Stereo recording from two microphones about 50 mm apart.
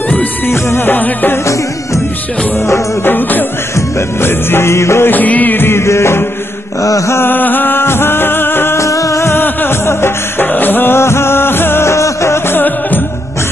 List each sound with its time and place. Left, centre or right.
0.5 s music: left
3.1 s music: left
4.2 s music: left
5.0 s music: left
5.9 s music: left
7.2 s music: left
8.7 s music: left
9.3 s music: left
11.0 s music of bollywood: left
11.8 s music of bollywood: left
12.4 s music: left